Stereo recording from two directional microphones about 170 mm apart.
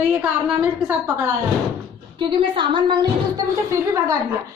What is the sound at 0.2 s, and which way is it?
A woman's voice, 5° right (ahead or behind).